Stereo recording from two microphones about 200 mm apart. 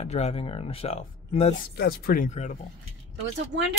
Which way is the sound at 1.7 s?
50° left (ahead or behind).